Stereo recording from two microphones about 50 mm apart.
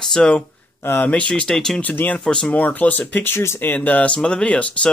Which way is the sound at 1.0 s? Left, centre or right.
Left.